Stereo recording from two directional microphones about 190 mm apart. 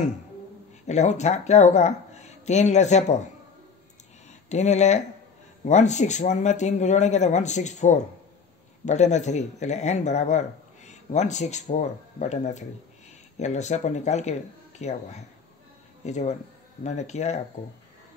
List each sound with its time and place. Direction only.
0.8 s speech: 40° left (ahead or behind)
4.5 s speech: 35° left (ahead or behind)